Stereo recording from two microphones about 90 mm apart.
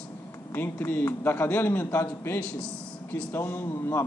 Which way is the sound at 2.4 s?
15° left (ahead or behind).